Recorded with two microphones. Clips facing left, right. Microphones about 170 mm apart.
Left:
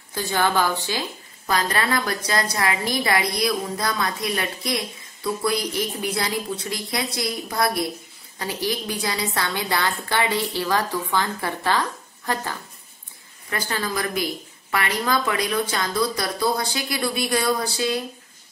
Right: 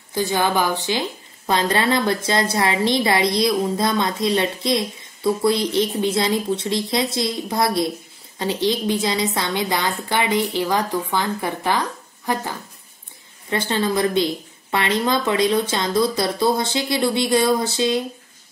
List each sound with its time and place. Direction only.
0.1 s a woman's voice: 20° right (ahead or behind)